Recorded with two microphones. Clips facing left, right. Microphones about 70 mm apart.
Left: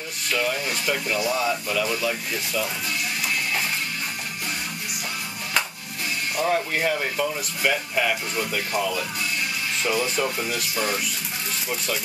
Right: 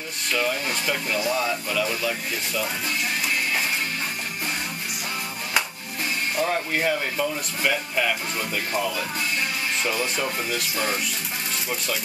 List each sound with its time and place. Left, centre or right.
0.3 s speech: centre
6.3 s speech: centre
9.8 s speech: centre